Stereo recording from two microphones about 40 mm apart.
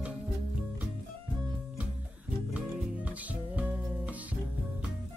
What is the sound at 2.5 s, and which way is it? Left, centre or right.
Music, right.